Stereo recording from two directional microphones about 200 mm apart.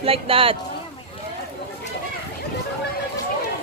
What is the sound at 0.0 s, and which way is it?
Speech, 30° right (ahead or behind).